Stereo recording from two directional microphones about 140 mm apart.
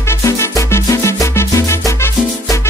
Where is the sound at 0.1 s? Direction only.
20° left (ahead or behind).